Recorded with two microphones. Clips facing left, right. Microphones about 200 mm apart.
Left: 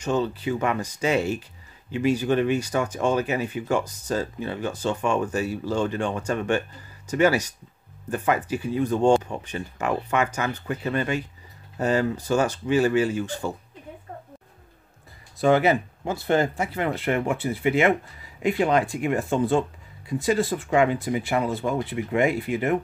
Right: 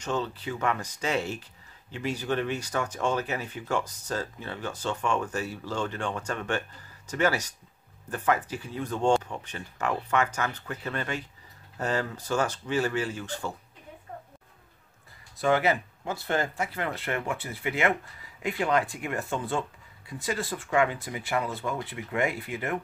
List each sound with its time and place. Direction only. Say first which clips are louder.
0.0 s speech: left 6 dB; 10° left (ahead or behind)
15.4 s speech: left 5 dB; 25° left (ahead or behind)